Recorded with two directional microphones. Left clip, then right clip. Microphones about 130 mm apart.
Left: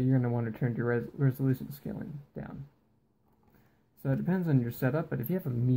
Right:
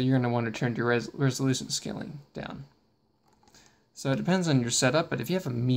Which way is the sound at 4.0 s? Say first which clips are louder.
Right 6 dB; 15° right (ahead or behind).